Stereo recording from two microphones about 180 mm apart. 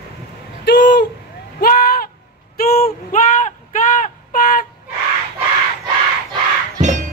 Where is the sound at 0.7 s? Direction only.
65° left (ahead or behind).